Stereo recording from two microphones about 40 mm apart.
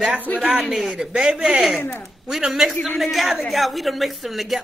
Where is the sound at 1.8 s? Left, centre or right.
Left.